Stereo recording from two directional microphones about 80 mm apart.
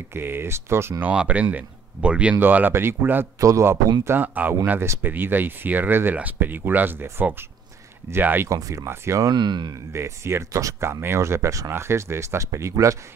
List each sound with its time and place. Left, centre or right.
0.1 s speech: right
1.0 s speech: centre
3.3 s speech: right
4.0 s speech: right
8.5 s speech: right
9.3 s speech: right
9.9 s speech: right